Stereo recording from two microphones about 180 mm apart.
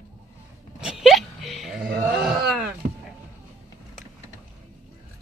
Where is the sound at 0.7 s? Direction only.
Centre (ahead or behind).